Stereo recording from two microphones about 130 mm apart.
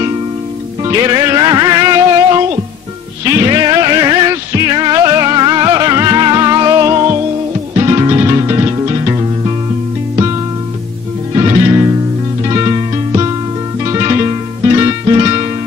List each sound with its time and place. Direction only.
0.8 s music: 30° right (ahead or behind)
12.4 s music: 30° right (ahead or behind)